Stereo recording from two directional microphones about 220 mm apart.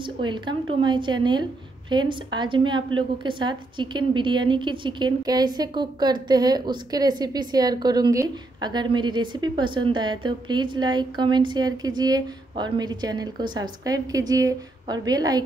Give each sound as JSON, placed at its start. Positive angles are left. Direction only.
{"t": 0.0, "sound": "a woman's voice", "side_deg": -20}